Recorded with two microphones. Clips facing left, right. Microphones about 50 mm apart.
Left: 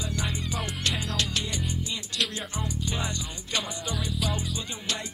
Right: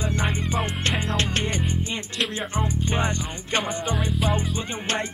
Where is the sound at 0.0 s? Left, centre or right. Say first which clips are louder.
Right 6 dB; right.